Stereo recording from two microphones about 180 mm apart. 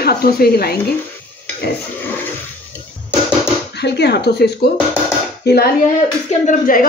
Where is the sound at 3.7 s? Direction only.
70° left (ahead or behind).